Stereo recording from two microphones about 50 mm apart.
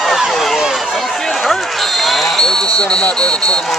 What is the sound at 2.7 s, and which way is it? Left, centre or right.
Speech, left.